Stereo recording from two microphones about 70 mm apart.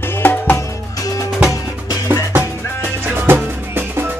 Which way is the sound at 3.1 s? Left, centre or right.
Right.